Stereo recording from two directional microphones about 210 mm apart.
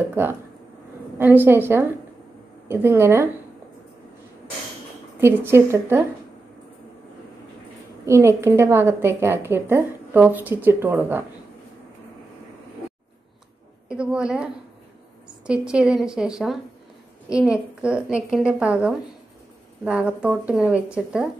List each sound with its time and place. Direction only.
0.1 s a woman's voice: 10° right (ahead or behind)
5.2 s a woman's voice: 10° right (ahead or behind)
8.0 s a woman's voice: 15° right (ahead or behind)
13.8 s a woman's voice: 5° right (ahead or behind)